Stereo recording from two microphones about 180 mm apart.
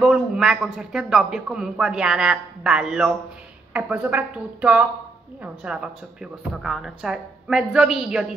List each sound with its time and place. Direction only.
0.0 s a man's voice: 5° right (ahead or behind)